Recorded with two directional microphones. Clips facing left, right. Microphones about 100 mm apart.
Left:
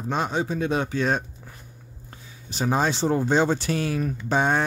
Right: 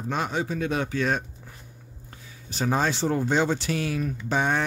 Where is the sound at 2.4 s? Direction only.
15° left (ahead or behind).